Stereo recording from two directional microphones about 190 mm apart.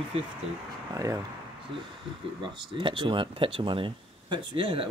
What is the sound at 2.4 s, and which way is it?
Speech, 25° right (ahead or behind).